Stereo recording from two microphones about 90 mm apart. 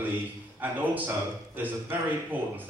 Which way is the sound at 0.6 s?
20° right (ahead or behind).